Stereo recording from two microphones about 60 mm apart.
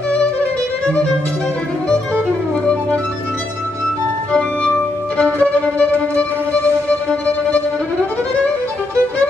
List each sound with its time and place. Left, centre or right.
5.1 s music: left